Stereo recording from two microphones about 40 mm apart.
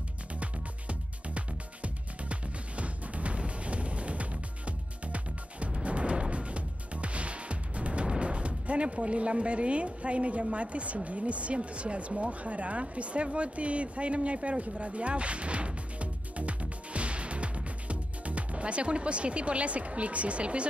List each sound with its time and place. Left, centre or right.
0.4 s music: right
10.5 s speech: right